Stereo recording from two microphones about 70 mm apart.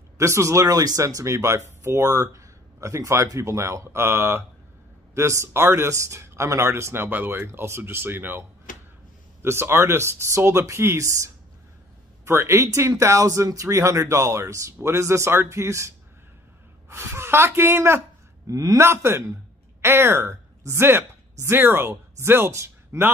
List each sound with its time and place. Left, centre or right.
0.2 s speech: right
16.9 s speech: right
18.5 s a man's voice: right
18.8 s a woman's voice: right